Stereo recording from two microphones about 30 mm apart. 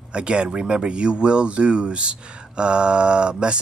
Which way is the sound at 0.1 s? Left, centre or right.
Right.